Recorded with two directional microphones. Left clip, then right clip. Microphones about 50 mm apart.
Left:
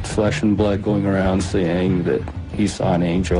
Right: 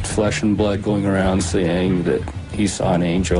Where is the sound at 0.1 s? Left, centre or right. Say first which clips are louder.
Even; right.